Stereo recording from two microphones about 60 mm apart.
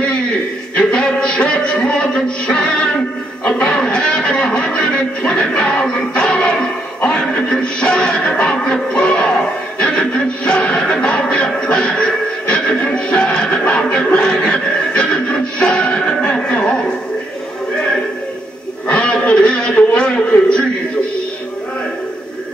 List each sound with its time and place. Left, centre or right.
0.7 s a man's voice: centre
3.4 s music: centre
7.8 s music: centre
10.4 s music: centre
18.9 s radio: centre
19.9 s a sound: centre